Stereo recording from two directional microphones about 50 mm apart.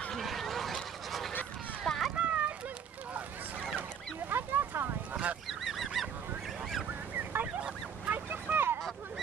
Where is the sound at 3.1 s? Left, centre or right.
Right.